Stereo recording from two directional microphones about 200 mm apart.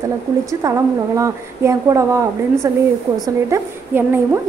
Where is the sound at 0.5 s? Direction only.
15° right (ahead or behind).